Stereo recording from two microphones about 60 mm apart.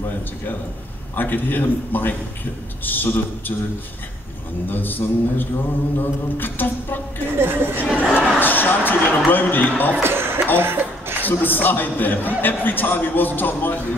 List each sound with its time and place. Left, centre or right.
1.1 s a man's voice: left
4.6 s a man's voice: left
7.3 s speech: right
7.9 s speech: centre
8.4 s a man's voice: left
10.0 s a sound: right
11.2 s a man's voice: left